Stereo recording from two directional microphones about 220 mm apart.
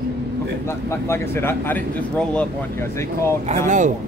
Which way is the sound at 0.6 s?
10° left (ahead or behind).